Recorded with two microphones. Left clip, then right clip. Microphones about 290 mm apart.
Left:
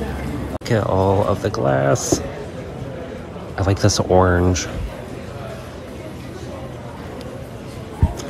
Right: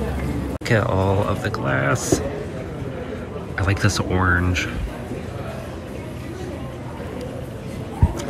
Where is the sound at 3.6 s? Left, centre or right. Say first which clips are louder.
Left 4 dB; centre.